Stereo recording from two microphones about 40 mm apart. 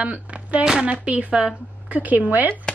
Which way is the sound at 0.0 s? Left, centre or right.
Right.